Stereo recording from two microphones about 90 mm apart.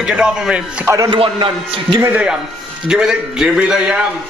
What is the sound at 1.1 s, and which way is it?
Speech, 65° right (ahead or behind).